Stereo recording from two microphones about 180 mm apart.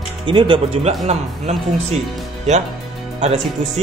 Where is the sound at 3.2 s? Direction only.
35° right (ahead or behind).